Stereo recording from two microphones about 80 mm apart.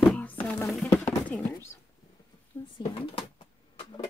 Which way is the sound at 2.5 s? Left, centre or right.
Left.